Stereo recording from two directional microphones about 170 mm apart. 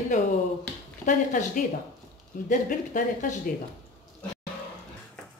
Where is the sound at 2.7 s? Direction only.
50° left (ahead or behind).